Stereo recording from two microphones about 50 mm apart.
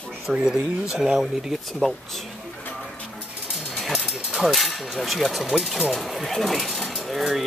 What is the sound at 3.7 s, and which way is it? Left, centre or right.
Dog, centre.